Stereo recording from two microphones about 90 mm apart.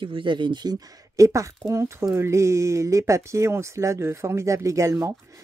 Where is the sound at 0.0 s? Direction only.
65° right (ahead or behind).